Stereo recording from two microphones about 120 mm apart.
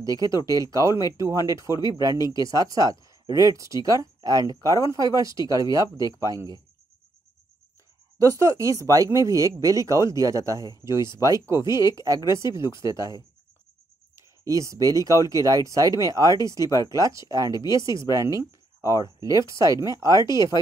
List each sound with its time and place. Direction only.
0.0 s speech: 30° right (ahead or behind)
1.7 s speech: 35° left (ahead or behind)
2.3 s speech: 30° right (ahead or behind)
8.2 s speech: 25° right (ahead or behind)